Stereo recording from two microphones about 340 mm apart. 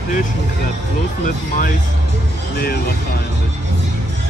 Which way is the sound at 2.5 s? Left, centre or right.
Left.